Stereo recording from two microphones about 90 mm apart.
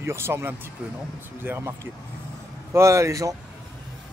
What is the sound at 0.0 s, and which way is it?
Speech, 30° right (ahead or behind).